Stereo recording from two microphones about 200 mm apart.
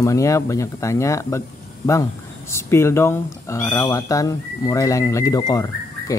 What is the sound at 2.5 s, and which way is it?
Speech, 15° left (ahead or behind).